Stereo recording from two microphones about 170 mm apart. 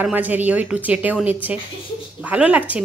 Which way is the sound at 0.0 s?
10° right (ahead or behind).